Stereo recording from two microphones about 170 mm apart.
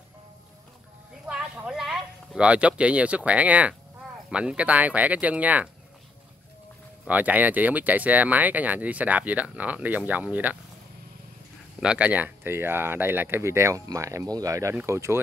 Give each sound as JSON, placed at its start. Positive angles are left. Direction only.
{"t": 1.3, "sound": "speech", "side_deg": -5}
{"t": 7.1, "sound": "speech", "side_deg": -10}
{"t": 11.8, "sound": "speech", "side_deg": -5}